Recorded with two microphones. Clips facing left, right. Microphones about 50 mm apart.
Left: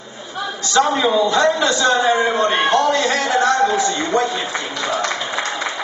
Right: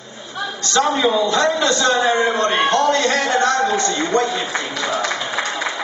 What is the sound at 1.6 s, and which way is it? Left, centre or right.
Speech, centre.